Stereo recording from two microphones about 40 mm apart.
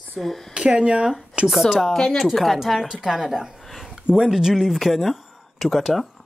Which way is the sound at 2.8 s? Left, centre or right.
Centre.